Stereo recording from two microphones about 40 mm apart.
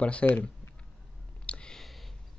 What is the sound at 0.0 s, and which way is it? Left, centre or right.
Speech, left.